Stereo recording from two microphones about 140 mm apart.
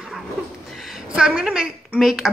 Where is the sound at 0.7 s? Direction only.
Centre (ahead or behind).